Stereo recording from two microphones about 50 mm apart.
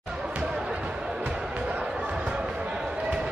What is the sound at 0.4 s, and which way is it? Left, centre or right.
Music, centre.